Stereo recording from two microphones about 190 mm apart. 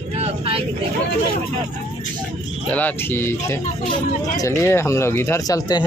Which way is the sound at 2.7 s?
10° left (ahead or behind).